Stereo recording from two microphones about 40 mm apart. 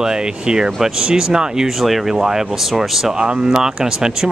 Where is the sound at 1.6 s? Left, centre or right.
Centre.